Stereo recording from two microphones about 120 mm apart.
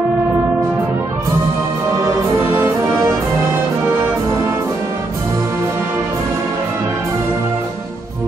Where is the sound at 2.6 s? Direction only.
20° right (ahead or behind).